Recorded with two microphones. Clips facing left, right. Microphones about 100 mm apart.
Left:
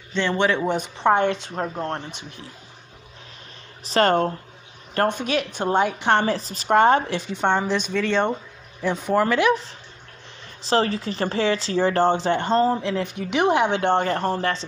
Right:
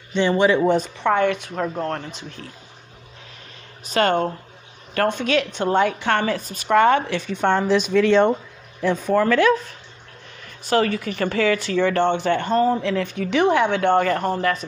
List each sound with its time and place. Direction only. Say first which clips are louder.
0.1 s speech: right 4 dB; 10° right (ahead or behind)
0.9 s speech: even; 25° left (ahead or behind)
3.8 s a woman's voice: left 1 dB; 35° left (ahead or behind)
5.0 s a woman's voice: right 2 dB; 15° left (ahead or behind); by 7.3 s 30° left (ahead or behind)
7.3 s speech: right 3 dB; centre (ahead or behind)
8.9 s speech: right 2 dB; 15° left (ahead or behind); by 14.6 s 30° left (ahead or behind)